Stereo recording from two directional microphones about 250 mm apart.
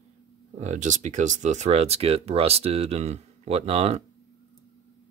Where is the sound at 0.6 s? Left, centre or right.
Right.